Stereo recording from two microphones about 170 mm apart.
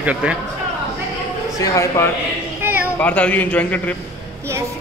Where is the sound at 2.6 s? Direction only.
10° right (ahead or behind).